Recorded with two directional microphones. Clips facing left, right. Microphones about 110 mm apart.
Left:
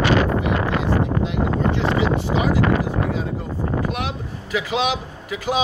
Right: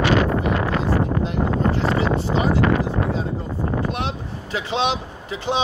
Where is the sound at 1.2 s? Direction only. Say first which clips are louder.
Even; 35° right (ahead or behind).